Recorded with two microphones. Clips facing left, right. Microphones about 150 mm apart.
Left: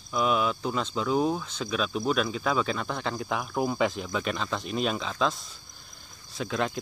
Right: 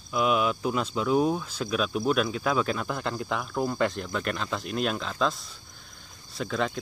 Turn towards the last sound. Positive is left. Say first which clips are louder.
# even
turn(degrees=0)  # may be behind; listen again after turning